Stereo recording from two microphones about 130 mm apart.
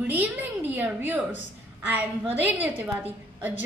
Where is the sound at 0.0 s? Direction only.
15° right (ahead or behind).